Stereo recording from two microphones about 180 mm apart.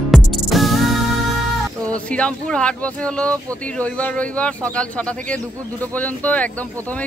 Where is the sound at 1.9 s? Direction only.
5° left (ahead or behind).